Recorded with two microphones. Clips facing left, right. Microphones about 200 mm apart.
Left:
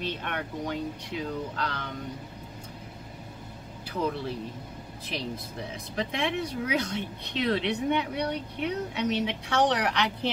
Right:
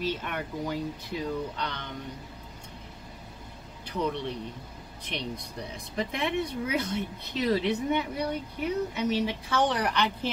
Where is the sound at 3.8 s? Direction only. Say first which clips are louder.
Even; 5° left (ahead or behind).